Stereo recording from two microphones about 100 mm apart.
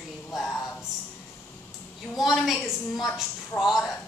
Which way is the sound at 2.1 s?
Centre (ahead or behind).